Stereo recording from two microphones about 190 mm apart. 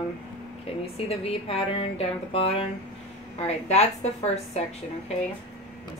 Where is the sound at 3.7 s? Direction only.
35° left (ahead or behind).